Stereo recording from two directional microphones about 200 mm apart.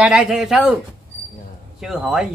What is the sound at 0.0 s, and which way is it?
Speech, 5° right (ahead or behind).